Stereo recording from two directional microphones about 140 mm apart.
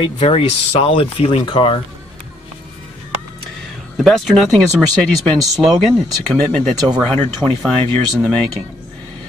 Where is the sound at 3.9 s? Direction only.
Centre (ahead or behind).